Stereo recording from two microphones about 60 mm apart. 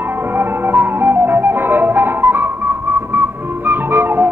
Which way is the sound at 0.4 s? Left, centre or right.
Right.